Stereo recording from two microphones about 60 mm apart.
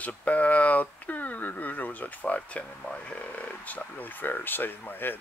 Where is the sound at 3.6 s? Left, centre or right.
Left.